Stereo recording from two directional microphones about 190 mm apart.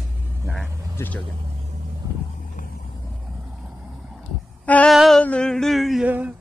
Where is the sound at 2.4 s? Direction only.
45° left (ahead or behind).